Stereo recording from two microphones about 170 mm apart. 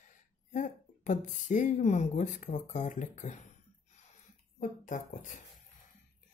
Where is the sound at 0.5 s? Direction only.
50° left (ahead or behind).